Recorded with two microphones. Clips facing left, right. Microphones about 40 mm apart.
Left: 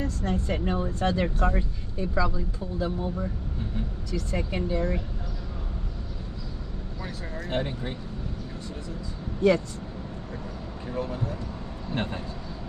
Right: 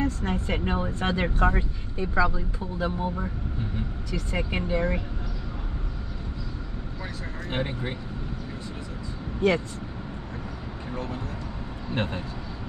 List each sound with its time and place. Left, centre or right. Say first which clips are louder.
0.0 s speech: right 2 dB; right
7.4 s speech: even; centre
10.9 s speech: left 3 dB; centre